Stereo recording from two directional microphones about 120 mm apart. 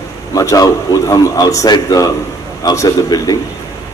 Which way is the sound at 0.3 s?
30° left (ahead or behind).